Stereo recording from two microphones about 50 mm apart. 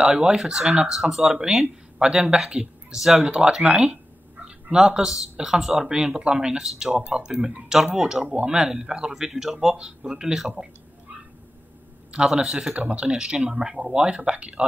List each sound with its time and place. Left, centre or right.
0.0 s speech: centre
9.1 s speech: centre
12.3 s speech: centre